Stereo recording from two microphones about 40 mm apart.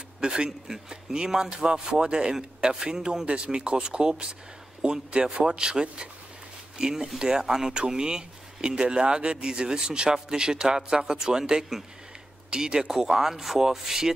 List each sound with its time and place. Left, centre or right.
0.2 s a man's voice: right
0.5 s speech: centre